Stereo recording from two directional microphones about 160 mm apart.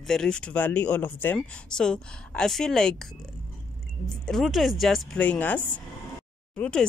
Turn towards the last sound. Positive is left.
turn(degrees=10)  # may be behind; listen again after turning